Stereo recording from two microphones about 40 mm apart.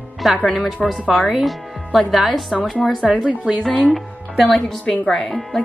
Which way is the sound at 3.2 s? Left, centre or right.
Centre.